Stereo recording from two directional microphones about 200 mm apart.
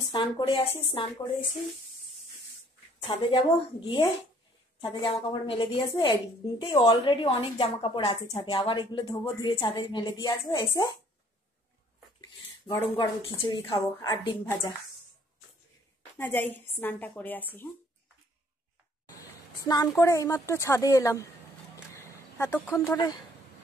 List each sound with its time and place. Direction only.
0.0 s a woman's voice: 25° left (ahead or behind)
3.1 s a woman's voice: 25° left (ahead or behind)
12.8 s a woman's voice: 25° left (ahead or behind)
16.2 s a woman's voice: 10° left (ahead or behind)
19.0 s a woman's voice: 20° left (ahead or behind)
21.9 s a sound: 15° left (ahead or behind)